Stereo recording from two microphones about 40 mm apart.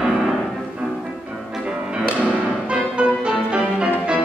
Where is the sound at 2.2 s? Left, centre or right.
Right.